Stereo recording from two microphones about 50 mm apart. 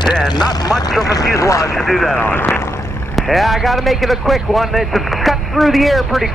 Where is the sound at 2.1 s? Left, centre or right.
Left.